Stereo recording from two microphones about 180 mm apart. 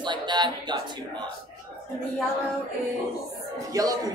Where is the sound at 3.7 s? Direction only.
20° right (ahead or behind).